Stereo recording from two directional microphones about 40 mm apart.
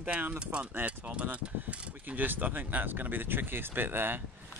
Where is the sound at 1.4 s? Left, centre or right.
Right.